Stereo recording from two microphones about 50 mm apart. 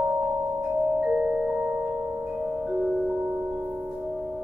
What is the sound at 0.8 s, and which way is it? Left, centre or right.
Music, centre.